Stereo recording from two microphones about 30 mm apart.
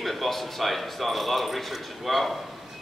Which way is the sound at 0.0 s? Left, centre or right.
Centre.